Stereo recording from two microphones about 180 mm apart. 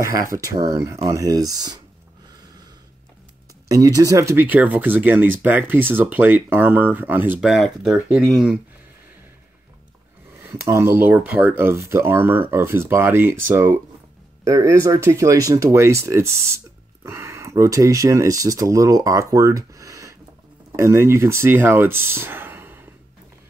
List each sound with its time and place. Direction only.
0.3 s speech: 20° right (ahead or behind)
3.6 s speech: 20° right (ahead or behind); by 8.3 s centre (ahead or behind)
10.5 s speech: 15° right (ahead or behind)
14.4 s speech: 15° right (ahead or behind)